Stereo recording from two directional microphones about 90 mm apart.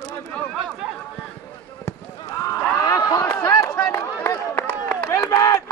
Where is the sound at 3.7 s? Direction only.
30° left (ahead or behind).